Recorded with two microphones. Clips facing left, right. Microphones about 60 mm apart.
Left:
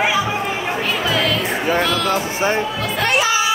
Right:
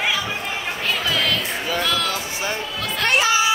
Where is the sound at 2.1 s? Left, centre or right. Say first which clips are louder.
Left 7 dB; left.